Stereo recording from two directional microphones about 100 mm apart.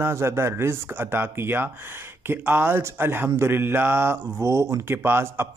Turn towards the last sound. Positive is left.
turn(degrees=-25)  # may be behind; listen again after turning